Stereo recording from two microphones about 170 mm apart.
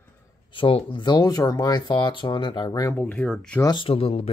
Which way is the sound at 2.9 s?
10° left (ahead or behind).